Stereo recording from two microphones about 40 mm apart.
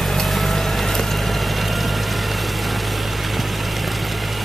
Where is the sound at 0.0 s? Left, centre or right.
Centre.